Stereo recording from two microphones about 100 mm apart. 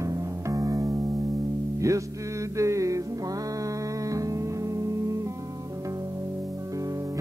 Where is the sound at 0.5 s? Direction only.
35° right (ahead or behind).